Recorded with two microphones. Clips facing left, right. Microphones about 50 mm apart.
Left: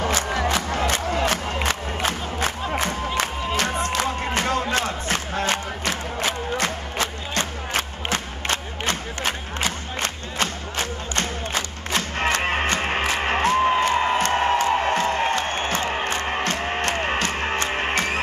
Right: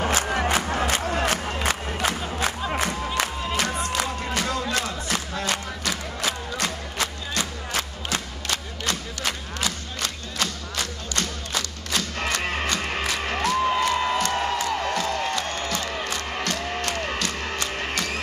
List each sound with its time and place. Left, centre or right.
0.5 s music: left
1.2 s crowd: left
3.9 s a sound: left
13.7 s music: left